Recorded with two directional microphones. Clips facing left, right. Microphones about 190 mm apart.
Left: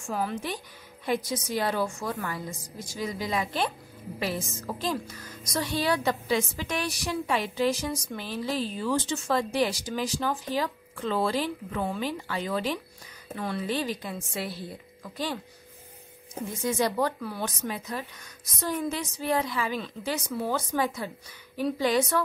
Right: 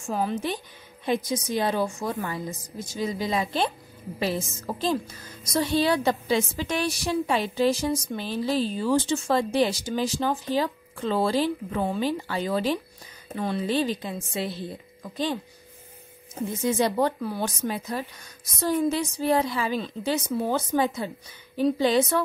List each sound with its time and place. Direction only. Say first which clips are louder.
0.1 s a woman's voice: right 4 dB; 25° right (ahead or behind)
16.6 s a woman's voice: right 3 dB; 25° right (ahead or behind)